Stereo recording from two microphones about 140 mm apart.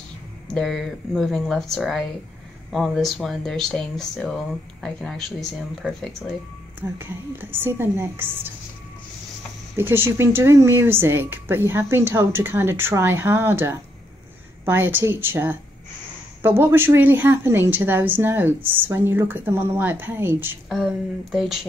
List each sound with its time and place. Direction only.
0.6 s speech: centre (ahead or behind)
7.0 s a woman's voice: 15° right (ahead or behind)
9.8 s a woman's voice: 15° right (ahead or behind)
20.7 s speech: centre (ahead or behind)